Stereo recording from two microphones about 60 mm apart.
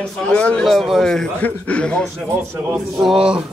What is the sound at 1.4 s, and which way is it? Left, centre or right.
Speech, left.